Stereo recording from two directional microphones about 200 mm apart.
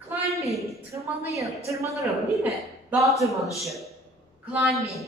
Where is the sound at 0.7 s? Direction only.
15° right (ahead or behind).